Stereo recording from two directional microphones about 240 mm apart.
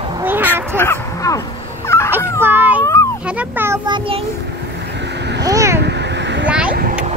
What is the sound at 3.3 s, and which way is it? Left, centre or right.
Speech, centre.